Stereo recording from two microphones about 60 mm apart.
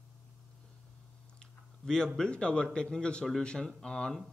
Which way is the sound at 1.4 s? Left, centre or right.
Centre.